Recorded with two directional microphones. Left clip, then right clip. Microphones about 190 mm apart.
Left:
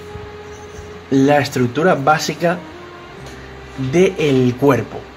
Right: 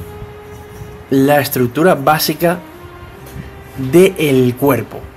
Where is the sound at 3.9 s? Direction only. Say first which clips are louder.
Right 4 dB; 25° right (ahead or behind).